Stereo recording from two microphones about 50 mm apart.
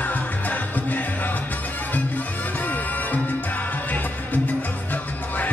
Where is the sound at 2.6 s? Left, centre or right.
Left.